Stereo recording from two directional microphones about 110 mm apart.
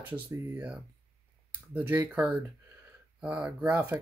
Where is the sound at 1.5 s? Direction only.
15° right (ahead or behind).